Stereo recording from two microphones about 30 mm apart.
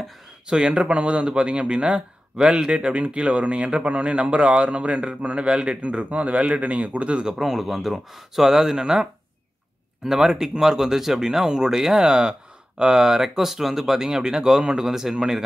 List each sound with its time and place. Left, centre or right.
0.7 s speech: right
5.8 s a man's voice: right
7.3 s speech: centre
8.5 s speech: centre
10.0 s speech: centre